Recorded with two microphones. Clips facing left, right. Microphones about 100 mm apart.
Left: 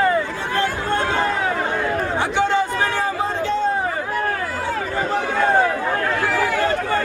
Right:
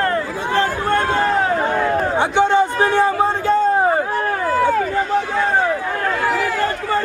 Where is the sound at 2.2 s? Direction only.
20° right (ahead or behind).